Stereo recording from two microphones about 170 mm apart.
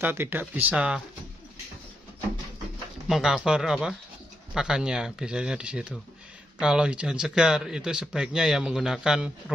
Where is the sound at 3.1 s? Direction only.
5° right (ahead or behind).